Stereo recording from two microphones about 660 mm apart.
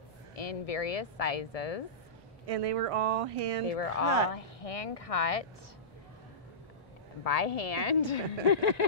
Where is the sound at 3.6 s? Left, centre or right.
Left.